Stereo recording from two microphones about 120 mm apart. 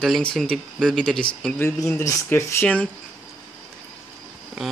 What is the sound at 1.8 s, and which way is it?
Speech, 25° left (ahead or behind).